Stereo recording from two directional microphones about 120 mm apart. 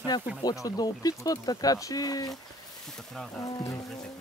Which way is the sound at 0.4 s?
30° left (ahead or behind).